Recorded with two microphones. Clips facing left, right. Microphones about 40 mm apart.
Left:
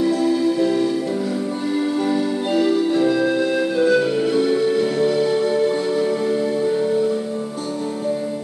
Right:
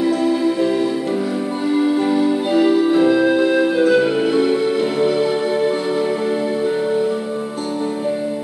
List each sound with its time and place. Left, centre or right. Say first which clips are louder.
0.0 s music: right 1 dB; centre